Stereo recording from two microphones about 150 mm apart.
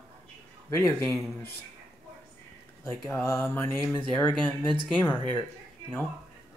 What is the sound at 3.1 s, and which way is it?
Speech, 15° left (ahead or behind).